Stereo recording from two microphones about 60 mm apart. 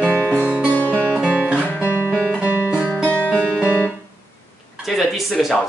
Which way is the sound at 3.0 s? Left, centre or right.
Left.